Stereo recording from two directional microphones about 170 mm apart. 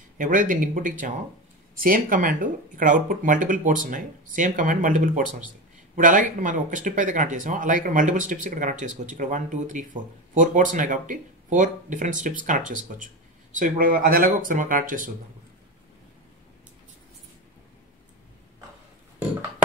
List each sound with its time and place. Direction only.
0.2 s speech: 50° right (ahead or behind)